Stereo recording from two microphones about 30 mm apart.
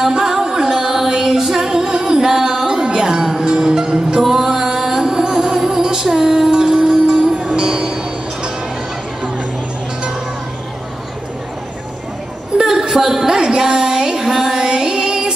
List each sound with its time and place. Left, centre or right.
0.2 s music: centre
4.2 s music: centre; by 8.5 s right
12.5 s a sound: centre
14.6 s music: right